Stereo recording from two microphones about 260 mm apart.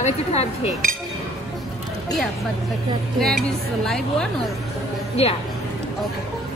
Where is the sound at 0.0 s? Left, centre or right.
Left.